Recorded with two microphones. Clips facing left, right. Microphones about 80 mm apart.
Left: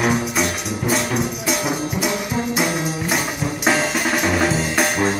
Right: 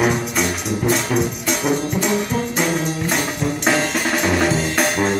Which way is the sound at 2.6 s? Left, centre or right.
Centre.